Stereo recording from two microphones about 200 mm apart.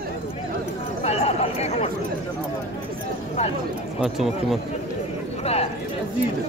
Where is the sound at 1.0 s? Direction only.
30° left (ahead or behind).